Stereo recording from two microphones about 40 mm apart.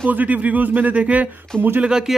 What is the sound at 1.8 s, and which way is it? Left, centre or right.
Speech, centre.